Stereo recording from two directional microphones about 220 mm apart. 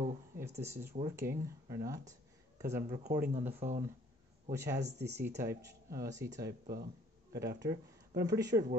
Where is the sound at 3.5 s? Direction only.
30° right (ahead or behind).